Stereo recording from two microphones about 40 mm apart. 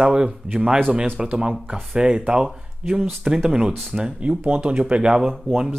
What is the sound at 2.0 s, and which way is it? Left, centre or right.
Speech, right.